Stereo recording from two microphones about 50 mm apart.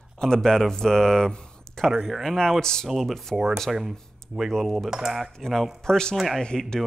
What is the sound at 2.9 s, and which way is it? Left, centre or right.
Speech, centre.